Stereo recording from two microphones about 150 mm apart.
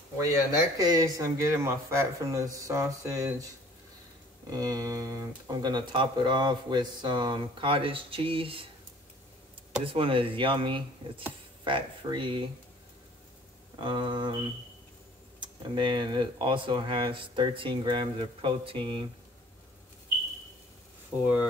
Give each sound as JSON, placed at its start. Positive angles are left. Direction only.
{"t": 0.2, "sound": "speech", "side_deg": -25}
{"t": 4.5, "sound": "speech", "side_deg": -25}
{"t": 9.9, "sound": "speech", "side_deg": -35}
{"t": 13.7, "sound": "speech", "side_deg": -30}
{"t": 15.4, "sound": "speech", "side_deg": -30}